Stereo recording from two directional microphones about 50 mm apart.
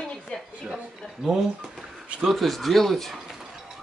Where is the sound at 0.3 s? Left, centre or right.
Left.